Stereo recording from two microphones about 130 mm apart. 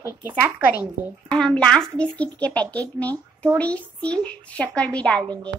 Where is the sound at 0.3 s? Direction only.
15° right (ahead or behind).